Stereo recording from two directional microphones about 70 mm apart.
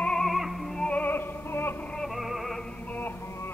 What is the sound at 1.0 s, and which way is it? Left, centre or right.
Music, left.